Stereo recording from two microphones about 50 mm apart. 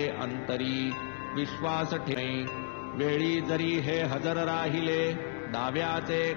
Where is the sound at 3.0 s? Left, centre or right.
Centre.